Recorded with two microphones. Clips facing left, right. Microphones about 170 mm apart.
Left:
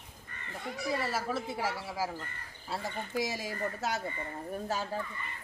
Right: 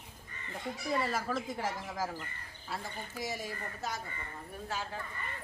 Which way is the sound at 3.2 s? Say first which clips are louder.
Left 5 dB; 90° left.